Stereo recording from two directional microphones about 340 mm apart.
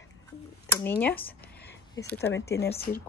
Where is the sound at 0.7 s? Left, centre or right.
Centre.